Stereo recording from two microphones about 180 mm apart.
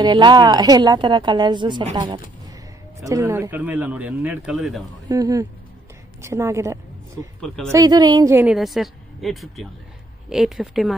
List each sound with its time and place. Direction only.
0.0 s a woman's voice: 25° right (ahead or behind); by 4.8 s centre (ahead or behind)
5.0 s a woman's voice: 20° right (ahead or behind)
8.5 s speech: centre (ahead or behind)